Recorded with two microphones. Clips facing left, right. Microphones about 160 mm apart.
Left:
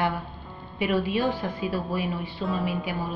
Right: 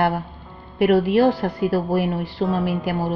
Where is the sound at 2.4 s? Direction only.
Centre (ahead or behind).